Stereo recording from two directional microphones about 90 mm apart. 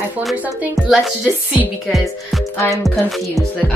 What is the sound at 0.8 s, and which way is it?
Music, 5° right (ahead or behind).